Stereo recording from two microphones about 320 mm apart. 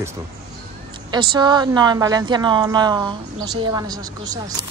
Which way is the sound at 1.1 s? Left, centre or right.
Centre.